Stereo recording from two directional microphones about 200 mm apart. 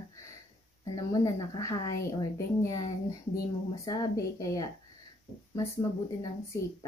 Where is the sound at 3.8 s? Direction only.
15° left (ahead or behind).